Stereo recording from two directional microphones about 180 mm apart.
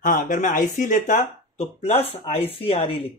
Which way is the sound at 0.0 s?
50° left (ahead or behind).